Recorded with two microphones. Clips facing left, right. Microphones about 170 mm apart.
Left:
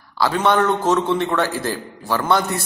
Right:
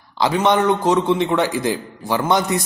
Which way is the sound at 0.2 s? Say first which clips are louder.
Right 1 dB; 15° right (ahead or behind).